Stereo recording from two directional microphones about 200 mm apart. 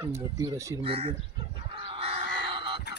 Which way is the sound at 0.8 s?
30° right (ahead or behind).